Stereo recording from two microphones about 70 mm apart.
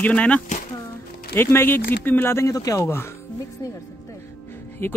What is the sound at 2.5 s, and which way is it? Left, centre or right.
Speech, left.